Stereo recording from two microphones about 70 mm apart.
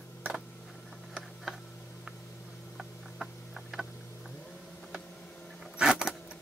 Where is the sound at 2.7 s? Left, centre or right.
Centre.